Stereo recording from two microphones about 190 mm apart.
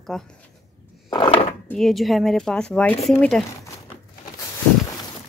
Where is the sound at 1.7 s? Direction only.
Centre (ahead or behind).